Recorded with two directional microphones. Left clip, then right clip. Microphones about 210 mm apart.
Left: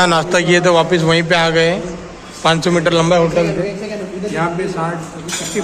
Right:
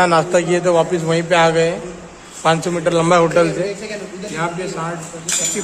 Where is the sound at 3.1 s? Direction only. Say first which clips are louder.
Right 4 dB; 45° right (ahead or behind).